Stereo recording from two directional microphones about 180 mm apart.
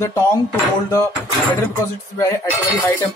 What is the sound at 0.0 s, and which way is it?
Speech, 15° left (ahead or behind).